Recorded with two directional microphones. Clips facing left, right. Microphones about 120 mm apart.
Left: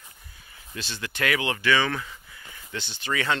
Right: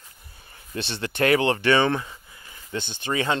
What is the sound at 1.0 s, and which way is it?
Speech, 30° right (ahead or behind).